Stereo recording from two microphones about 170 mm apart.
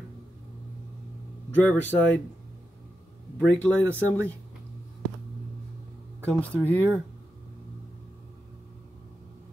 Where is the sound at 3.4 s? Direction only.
5° left (ahead or behind).